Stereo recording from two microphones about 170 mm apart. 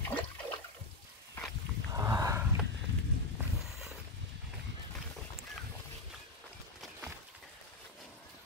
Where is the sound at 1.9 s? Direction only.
20° right (ahead or behind).